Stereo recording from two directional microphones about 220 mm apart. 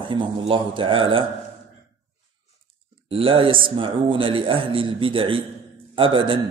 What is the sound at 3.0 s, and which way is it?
A man's voice, 25° right (ahead or behind).